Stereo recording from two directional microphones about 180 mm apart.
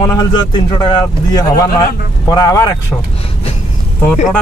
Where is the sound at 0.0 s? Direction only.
20° left (ahead or behind).